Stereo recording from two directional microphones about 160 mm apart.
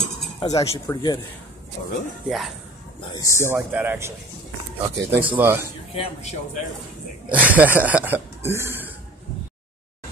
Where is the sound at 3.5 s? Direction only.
10° right (ahead or behind).